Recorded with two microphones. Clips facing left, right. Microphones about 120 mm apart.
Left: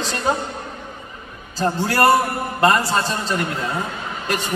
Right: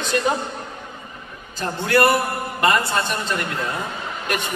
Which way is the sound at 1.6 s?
35° left (ahead or behind).